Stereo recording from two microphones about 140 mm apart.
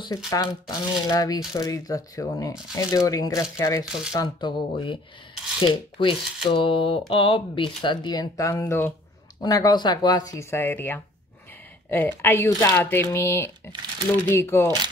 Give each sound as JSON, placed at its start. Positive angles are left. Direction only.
{"t": 0.3, "sound": "speech", "side_deg": 25}
{"t": 3.8, "sound": "speech", "side_deg": -5}
{"t": 4.1, "sound": "speech", "side_deg": 30}